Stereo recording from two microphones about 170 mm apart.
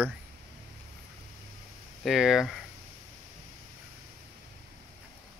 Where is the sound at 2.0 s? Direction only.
Centre (ahead or behind).